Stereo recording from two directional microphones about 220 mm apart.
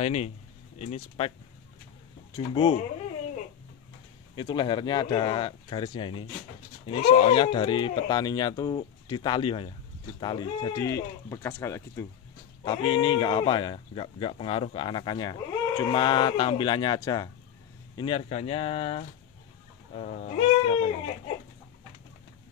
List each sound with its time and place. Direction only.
0.0 s speech: 30° left (ahead or behind)
2.3 s speech: 25° left (ahead or behind)
4.4 s speech: 20° left (ahead or behind)
19.9 s goat: 35° left (ahead or behind)